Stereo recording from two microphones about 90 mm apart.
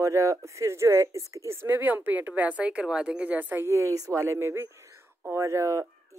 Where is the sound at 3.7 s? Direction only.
35° right (ahead or behind).